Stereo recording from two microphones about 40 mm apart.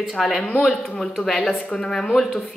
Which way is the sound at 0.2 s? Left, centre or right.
Centre.